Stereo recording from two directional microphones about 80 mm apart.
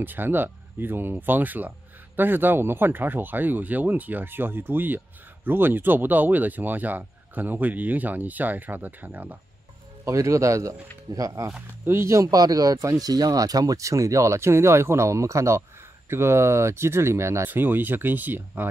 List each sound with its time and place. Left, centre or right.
0.0 s speech: right
10.0 s speech: right
11.8 s speech: right
17.5 s speech: right